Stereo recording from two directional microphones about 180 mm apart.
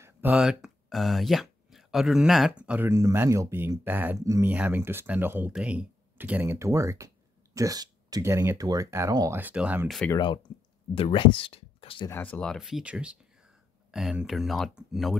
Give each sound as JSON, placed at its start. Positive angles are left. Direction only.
{"t": 0.0, "sound": "speech", "side_deg": -10}
{"t": 10.1, "sound": "speech", "side_deg": 25}
{"t": 12.1, "sound": "speech", "side_deg": 10}